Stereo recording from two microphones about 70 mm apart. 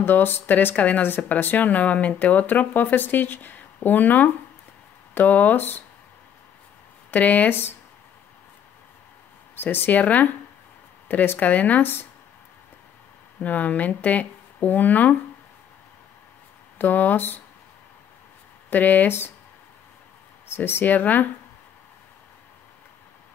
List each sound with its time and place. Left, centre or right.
0.0 s speech: left
7.1 s speech: left
9.6 s speech: left
13.4 s speech: left
16.7 s speech: left
18.7 s speech: left
20.4 s speech: left